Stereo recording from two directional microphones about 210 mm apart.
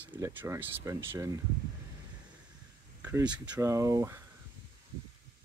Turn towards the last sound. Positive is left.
turn(degrees=-15)  # may be behind; listen again after turning